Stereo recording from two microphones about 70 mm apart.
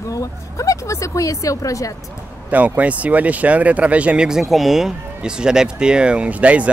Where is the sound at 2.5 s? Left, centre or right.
Right.